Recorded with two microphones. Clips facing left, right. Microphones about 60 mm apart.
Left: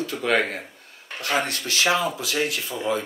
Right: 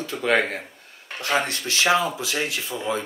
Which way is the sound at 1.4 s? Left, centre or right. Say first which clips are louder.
Even; right.